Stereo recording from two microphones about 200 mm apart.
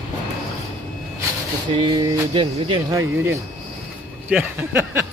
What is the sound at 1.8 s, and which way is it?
Speech, 25° right (ahead or behind).